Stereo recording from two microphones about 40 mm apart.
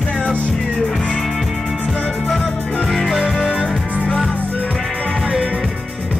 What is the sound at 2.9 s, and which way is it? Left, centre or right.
Music, centre.